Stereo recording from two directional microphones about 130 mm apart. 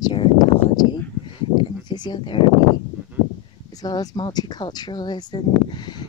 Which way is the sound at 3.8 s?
30° left (ahead or behind).